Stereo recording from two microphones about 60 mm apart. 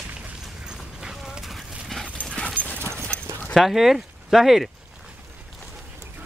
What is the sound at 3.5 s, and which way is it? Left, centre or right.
Speech, centre.